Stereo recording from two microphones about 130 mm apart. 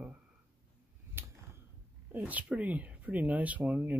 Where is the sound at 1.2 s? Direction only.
15° right (ahead or behind).